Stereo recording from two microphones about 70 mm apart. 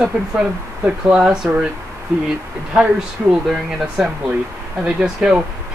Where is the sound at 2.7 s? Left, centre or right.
Centre.